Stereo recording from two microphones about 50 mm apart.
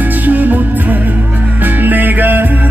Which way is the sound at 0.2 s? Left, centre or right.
Right.